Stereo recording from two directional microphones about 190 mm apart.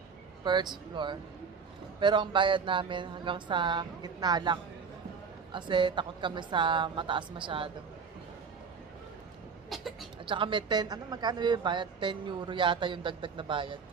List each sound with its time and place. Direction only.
0.4 s a woman's voice: 25° right (ahead or behind)
9.7 s a sound: centre (ahead or behind)
10.2 s a woman's voice: 25° right (ahead or behind)